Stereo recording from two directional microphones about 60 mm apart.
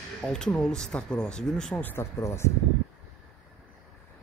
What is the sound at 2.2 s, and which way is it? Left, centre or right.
Speech, left.